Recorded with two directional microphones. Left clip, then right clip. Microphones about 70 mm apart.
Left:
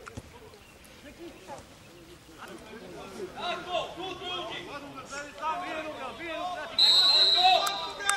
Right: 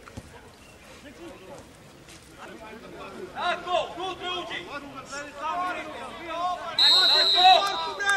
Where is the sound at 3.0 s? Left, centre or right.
Right.